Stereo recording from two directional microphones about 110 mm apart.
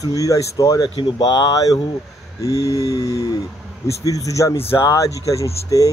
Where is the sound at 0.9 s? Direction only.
45° left (ahead or behind).